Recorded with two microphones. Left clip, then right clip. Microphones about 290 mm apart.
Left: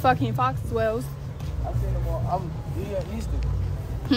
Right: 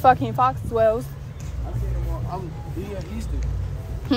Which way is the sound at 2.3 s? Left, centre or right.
Left.